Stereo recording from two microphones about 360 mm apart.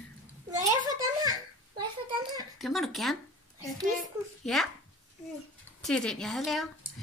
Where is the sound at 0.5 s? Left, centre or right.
Centre.